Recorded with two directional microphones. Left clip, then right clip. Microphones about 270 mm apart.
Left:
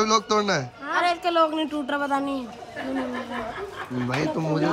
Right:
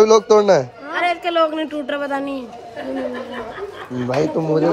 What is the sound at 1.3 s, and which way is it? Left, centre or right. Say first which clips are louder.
A man's voice: right 4 dB; left.